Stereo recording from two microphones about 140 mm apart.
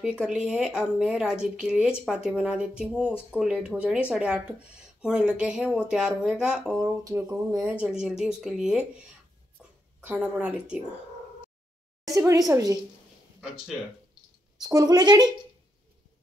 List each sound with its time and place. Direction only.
0.0 s speech: 5° right (ahead or behind)
7.1 s a woman's voice: 20° right (ahead or behind)
7.7 s speech: 5° right (ahead or behind)
10.0 s speech: 10° right (ahead or behind)
12.1 s a woman's voice: 20° right (ahead or behind)
14.6 s a woman's voice: 25° right (ahead or behind)